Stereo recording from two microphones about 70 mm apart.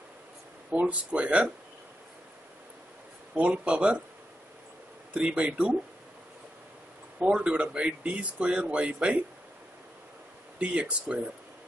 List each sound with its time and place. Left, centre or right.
0.7 s speech: centre
3.3 s speech: centre
5.1 s speech: centre
7.2 s speech: centre
10.6 s speech: centre